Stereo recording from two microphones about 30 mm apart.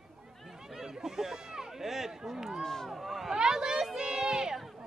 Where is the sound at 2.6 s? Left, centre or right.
Centre.